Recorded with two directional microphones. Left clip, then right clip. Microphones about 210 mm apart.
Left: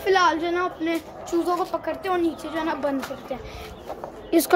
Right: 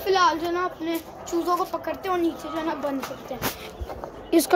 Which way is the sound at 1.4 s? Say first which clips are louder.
Even; 5° left (ahead or behind).